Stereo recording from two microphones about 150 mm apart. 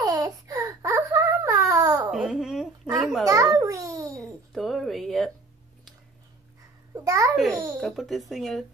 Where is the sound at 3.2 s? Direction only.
20° right (ahead or behind).